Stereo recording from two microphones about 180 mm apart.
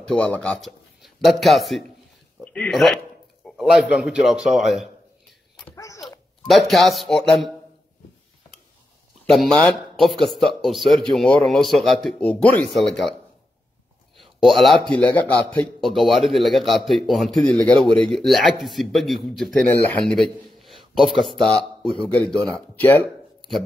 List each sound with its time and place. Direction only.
0.0 s a man's voice: 5° left (ahead or behind)
5.7 s babbling: 20° left (ahead or behind)
6.0 s speech: centre (ahead or behind)
9.2 s a man's voice: 5° left (ahead or behind)
14.2 s a man's voice: centre (ahead or behind)